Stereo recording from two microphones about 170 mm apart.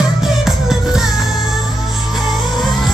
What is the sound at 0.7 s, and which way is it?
Music, centre (ahead or behind).